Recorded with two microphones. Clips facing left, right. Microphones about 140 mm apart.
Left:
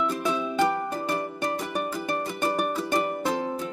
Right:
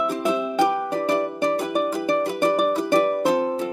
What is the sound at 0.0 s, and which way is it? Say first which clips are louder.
Music: right 4 dB; 10° right (ahead or behind).